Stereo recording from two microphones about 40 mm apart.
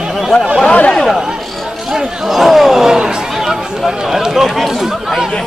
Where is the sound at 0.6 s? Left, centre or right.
Left.